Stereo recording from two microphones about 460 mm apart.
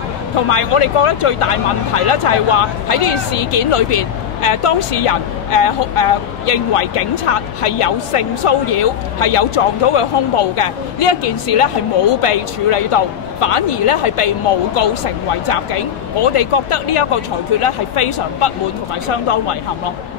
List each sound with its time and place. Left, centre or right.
0.5 s speech: left